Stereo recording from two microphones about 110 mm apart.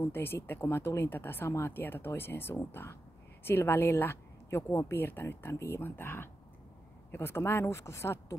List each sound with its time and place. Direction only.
0.0 s speech: 20° left (ahead or behind)